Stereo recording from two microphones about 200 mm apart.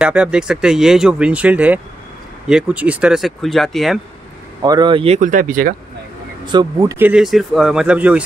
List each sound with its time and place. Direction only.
0.0 s speech: 5° right (ahead or behind)
4.6 s speech: 20° right (ahead or behind); by 5.8 s 45° right (ahead or behind)
6.4 s speech: 20° right (ahead or behind); by 8.2 s 5° right (ahead or behind)